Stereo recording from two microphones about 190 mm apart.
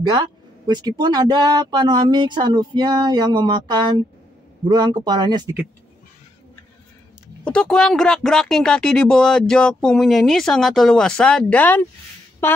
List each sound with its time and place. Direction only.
0.7 s speech: 20° right (ahead or behind)
7.4 s speech: 5° left (ahead or behind)